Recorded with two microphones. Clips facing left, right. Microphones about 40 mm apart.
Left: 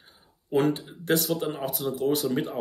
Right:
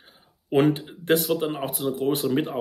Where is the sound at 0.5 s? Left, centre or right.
Right.